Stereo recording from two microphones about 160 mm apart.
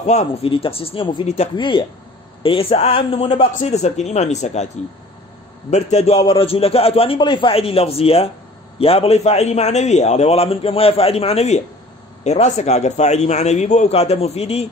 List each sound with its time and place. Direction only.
0.0 s a man's voice: 45° left (ahead or behind)
5.7 s a man's voice: 45° left (ahead or behind)